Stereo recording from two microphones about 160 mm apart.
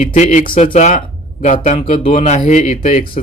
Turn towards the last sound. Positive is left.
turn(degrees=55)  # may be behind; listen again after turning